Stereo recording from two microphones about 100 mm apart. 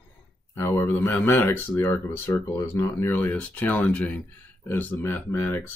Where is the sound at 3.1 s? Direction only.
15° left (ahead or behind).